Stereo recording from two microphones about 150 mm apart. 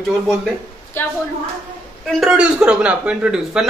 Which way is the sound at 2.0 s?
5° right (ahead or behind).